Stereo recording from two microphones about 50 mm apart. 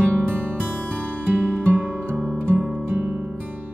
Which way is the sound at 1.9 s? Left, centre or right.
Centre.